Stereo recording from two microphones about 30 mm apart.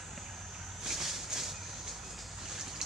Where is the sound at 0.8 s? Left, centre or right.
Centre.